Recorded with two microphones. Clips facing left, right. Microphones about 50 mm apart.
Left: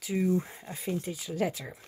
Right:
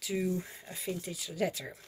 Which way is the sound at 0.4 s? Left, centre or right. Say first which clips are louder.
Left 5 dB; centre.